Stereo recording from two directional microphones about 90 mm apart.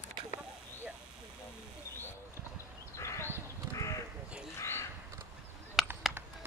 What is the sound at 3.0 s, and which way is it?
Crow, 30° left (ahead or behind).